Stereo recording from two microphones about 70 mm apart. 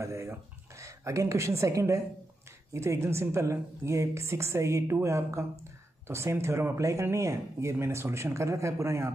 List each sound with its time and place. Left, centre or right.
0.0 s a woman's voice: right